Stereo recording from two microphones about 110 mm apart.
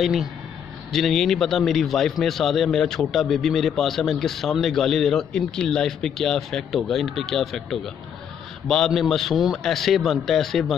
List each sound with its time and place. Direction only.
0.0 s a man's voice: centre (ahead or behind)